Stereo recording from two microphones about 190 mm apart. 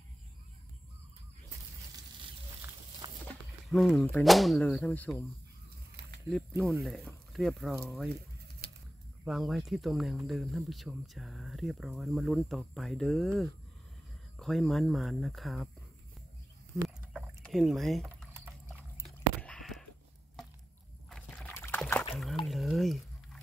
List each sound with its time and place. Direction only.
3.3 s a sound: centre (ahead or behind)
4.0 s speech: 5° left (ahead or behind)
6.3 s speech: centre (ahead or behind)
8.6 s pigeon: 55° right (ahead or behind)
9.2 s speech: centre (ahead or behind)
17.1 s rowboat: centre (ahead or behind)
18.3 s clip-clop: 10° right (ahead or behind)
19.0 s biting: 5° left (ahead or behind)
21.1 s a sound: 5° left (ahead or behind)
22.1 s a sound: centre (ahead or behind)